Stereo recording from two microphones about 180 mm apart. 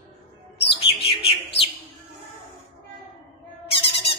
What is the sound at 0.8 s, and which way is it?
Bird, 30° left (ahead or behind).